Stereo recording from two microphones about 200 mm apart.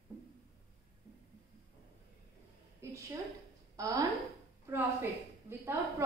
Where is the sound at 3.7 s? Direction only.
15° right (ahead or behind).